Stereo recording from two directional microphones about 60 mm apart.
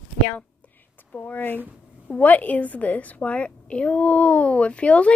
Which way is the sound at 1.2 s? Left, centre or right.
Left.